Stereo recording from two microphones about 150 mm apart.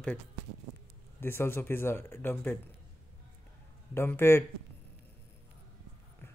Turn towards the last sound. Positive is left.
turn(degrees=15)  # may be behind; listen again after turning